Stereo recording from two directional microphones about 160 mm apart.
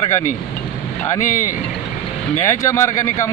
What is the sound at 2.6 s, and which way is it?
Speech, 20° left (ahead or behind).